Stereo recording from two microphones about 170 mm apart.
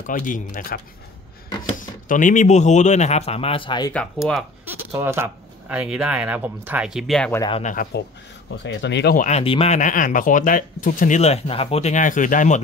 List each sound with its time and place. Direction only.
0.0 s speech: 50° left (ahead or behind)
1.8 s speech: 50° left (ahead or behind); by 3.9 s 30° left (ahead or behind)
3.9 s speech: 5° left (ahead or behind)
4.6 s speech: 15° right (ahead or behind); by 7.3 s 5° left (ahead or behind)
7.6 s speech: 55° left (ahead or behind)
8.6 s speech: 90° left
9.1 s speech: 50° left (ahead or behind)
9.4 s speech: 35° left (ahead or behind)